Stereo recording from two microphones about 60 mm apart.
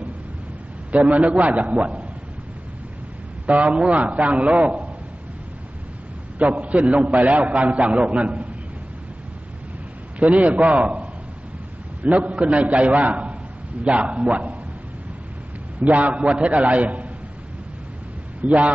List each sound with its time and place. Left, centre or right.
1.0 s a man's voice: right
3.4 s a man's voice: right
6.6 s a man's voice: right
10.3 s a man's voice: right
12.0 s a man's voice: right
15.8 s a man's voice: right
18.4 s a man's voice: right